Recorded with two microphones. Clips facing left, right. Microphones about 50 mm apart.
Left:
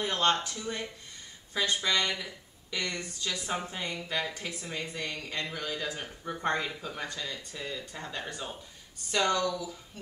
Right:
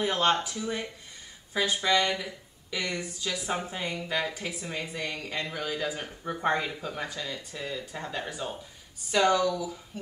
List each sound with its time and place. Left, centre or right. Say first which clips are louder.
0.0 s speech: right 2 dB; centre